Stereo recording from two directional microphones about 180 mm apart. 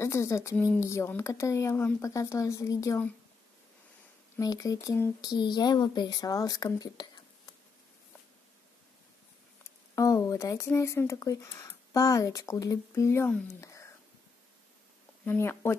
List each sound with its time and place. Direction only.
0.0 s speech: 15° left (ahead or behind)
4.4 s speech: 20° left (ahead or behind)
9.6 s speech: 15° left (ahead or behind)
13.5 s a sound: 15° left (ahead or behind)
15.2 s speech: 15° left (ahead or behind)